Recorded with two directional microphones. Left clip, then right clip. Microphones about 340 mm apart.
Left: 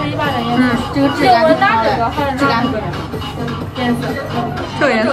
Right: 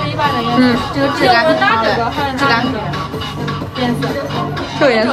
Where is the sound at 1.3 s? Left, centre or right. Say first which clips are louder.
Left 3 dB; centre.